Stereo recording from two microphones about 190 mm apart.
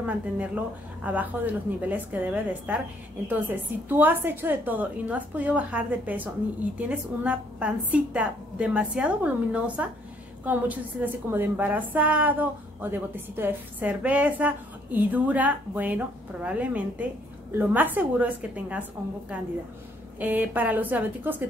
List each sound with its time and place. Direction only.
1.0 s a woman's voice: 10° right (ahead or behind)